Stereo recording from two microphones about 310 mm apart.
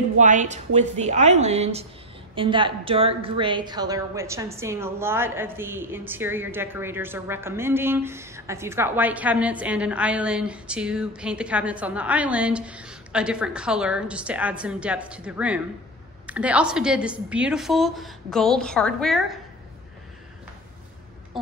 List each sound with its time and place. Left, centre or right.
0.2 s a woman's voice: right; by 19.3 s centre